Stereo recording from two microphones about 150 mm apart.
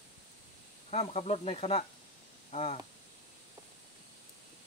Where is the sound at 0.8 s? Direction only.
45° left (ahead or behind).